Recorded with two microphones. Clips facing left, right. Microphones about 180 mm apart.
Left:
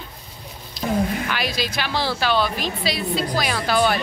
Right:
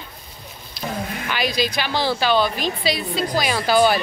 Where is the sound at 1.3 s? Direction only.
Centre (ahead or behind).